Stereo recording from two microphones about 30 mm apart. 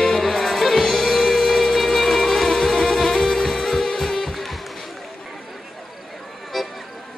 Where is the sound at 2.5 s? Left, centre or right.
Left.